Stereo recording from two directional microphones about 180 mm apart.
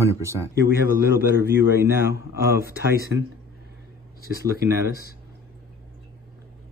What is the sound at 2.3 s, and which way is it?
Mantra, 60° right (ahead or behind).